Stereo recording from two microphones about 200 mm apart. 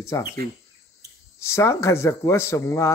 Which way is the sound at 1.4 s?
15° left (ahead or behind).